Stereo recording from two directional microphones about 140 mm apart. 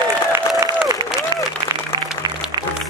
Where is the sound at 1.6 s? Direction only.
30° right (ahead or behind).